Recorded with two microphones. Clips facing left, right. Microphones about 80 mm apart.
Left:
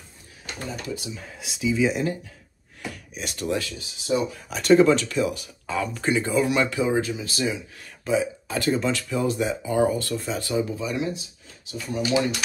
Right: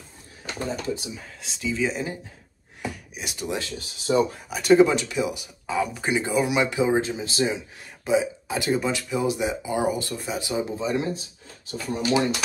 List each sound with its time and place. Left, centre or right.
0.7 s speech: right
1.2 s speech: centre
2.9 s a sound: centre
3.7 s speech: right
4.5 s speech: centre; by 12.3 s right